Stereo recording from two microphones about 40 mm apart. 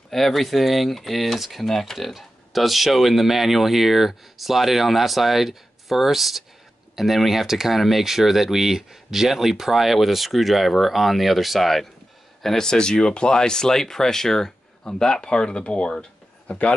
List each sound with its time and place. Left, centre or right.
0.1 s speech: centre; by 16.5 s left